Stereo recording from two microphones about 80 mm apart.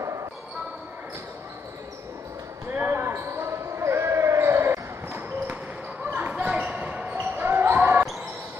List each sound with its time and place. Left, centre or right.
2.7 s basketball bounce: right